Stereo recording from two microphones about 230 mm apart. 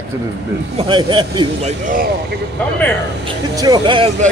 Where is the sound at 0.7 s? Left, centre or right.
Right.